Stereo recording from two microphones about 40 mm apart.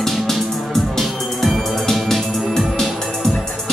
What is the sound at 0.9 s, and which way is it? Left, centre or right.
Music, centre.